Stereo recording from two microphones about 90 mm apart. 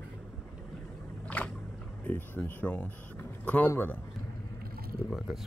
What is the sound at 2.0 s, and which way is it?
Speech, 20° left (ahead or behind).